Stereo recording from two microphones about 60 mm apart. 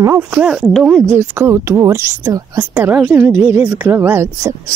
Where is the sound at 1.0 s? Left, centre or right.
Right.